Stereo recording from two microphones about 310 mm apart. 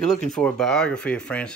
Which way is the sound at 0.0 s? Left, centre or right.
Centre.